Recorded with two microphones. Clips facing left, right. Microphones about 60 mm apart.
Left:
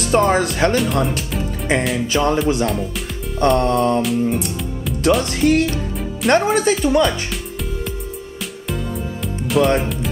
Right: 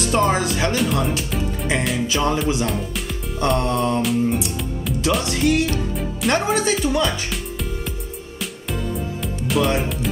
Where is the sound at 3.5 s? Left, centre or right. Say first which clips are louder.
Left 4 dB; left.